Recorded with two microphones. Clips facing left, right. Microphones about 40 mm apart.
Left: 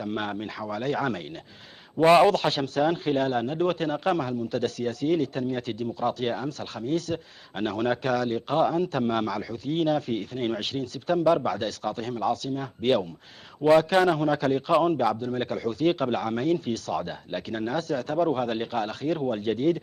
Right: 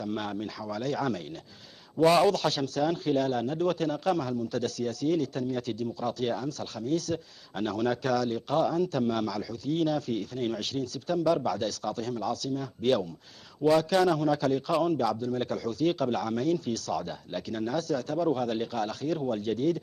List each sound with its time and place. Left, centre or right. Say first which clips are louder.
0.0 s a man's voice: left 2 dB; left